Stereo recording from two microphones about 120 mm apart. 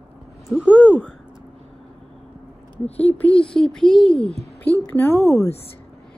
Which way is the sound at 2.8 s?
55° left (ahead or behind).